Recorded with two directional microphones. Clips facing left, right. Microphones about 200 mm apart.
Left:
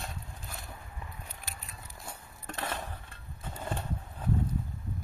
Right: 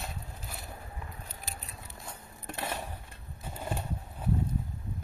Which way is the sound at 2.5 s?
10° right (ahead or behind).